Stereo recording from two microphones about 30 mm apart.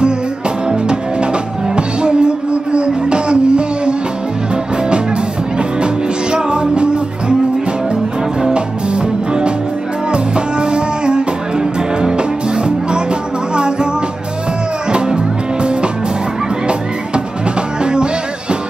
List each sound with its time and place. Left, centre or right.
0.7 s music: right
15.0 s music: right